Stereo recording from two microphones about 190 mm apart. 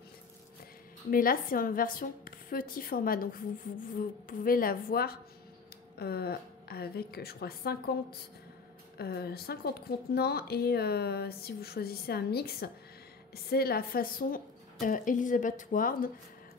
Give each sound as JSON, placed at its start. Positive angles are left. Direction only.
{"t": 1.1, "sound": "a woman's voice", "side_deg": 50}